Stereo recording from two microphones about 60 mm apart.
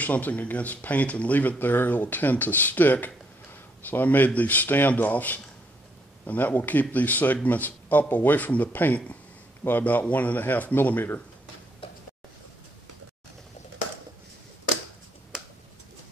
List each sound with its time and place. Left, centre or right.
0.0 s speech: left